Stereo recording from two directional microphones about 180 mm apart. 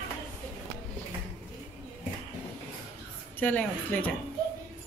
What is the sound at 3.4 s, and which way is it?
Speech, 10° left (ahead or behind).